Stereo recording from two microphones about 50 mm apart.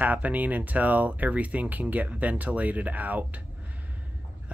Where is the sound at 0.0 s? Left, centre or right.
Right.